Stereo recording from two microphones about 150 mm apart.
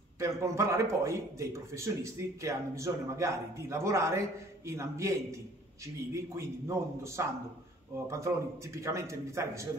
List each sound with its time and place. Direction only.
0.2 s a man's voice: 20° right (ahead or behind)